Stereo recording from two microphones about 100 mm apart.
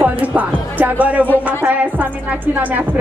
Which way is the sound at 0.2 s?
15° right (ahead or behind).